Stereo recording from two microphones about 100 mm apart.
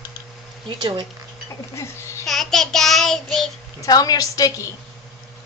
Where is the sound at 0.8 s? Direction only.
55° right (ahead or behind).